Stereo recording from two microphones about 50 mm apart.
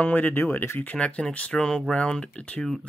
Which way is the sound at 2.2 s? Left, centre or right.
Left.